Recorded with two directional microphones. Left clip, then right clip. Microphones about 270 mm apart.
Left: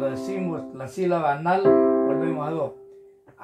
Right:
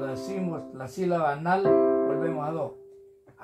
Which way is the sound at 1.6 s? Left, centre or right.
Left.